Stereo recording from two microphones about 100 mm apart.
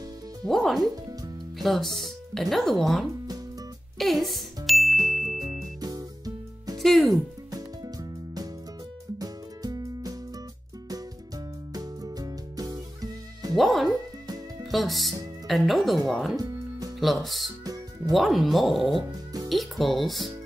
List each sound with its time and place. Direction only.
0.5 s speech: centre (ahead or behind)
4.6 s music: centre (ahead or behind)
5.4 s music: 35° right (ahead or behind)
6.8 s speech: centre (ahead or behind)
7.5 s music: 40° right (ahead or behind)
13.6 s music: centre (ahead or behind)
14.7 s speech: centre (ahead or behind)
16.3 s music: 35° right (ahead or behind)
17.0 s speech: centre (ahead or behind)